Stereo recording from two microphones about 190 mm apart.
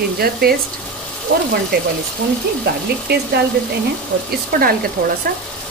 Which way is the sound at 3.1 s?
60° right (ahead or behind).